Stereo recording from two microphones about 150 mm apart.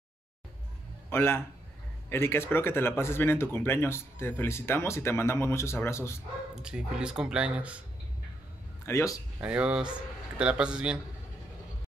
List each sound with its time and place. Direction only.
1.1 s speech: 15° left (ahead or behind)
6.5 s speech: 5° right (ahead or behind)
8.8 s a man's voice: 20° left (ahead or behind)
9.4 s speech: 10° right (ahead or behind)